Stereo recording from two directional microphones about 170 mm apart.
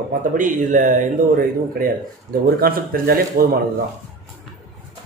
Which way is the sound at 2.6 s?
60° right (ahead or behind).